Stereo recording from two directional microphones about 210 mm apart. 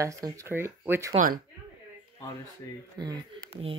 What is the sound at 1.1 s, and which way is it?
Speech, 40° right (ahead or behind).